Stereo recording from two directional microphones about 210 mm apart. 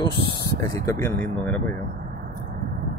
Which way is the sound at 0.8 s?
10° left (ahead or behind).